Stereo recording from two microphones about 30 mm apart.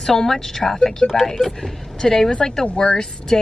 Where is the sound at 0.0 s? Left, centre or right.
Centre.